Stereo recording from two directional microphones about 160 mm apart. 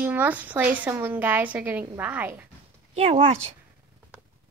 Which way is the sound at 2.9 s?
40° right (ahead or behind).